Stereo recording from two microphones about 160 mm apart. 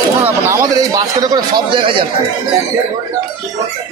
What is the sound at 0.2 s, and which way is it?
Speech, 20° right (ahead or behind).